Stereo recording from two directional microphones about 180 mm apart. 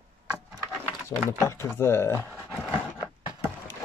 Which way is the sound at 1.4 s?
15° left (ahead or behind).